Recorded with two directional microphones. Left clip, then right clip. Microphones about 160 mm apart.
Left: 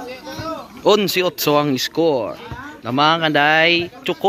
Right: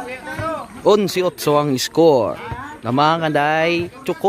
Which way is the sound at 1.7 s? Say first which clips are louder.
Right 1 dB; 25° right (ahead or behind).